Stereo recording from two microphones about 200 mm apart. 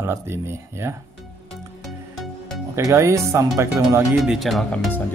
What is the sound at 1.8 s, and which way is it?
Music, centre (ahead or behind).